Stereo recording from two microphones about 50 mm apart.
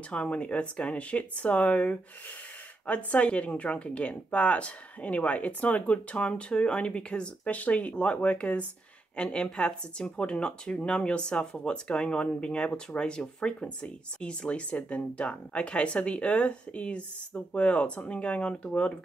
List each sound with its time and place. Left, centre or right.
0.1 s speech: left
7.4 s speech: left